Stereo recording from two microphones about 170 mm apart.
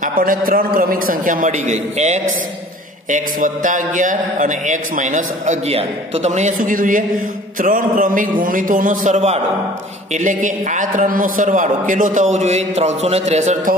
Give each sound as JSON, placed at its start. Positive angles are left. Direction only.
{"t": 0.0, "sound": "a man's voice", "side_deg": -55}